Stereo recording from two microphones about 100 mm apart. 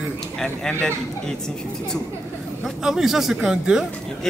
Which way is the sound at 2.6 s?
5° right (ahead or behind).